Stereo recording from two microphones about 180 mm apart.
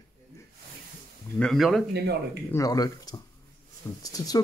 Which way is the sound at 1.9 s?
65° right (ahead or behind).